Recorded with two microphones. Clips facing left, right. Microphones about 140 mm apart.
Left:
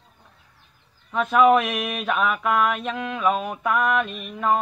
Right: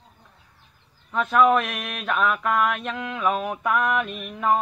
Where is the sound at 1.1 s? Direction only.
5° left (ahead or behind).